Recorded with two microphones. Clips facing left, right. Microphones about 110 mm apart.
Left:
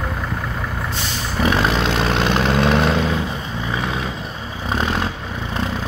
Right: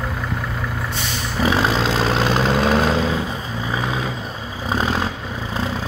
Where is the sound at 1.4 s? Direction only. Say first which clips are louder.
Even; 30° right (ahead or behind).